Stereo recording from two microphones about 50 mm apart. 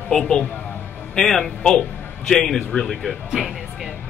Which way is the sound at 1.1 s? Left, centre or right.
Centre.